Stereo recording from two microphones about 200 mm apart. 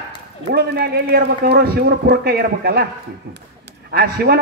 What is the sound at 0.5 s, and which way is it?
A man's voice, 55° right (ahead or behind).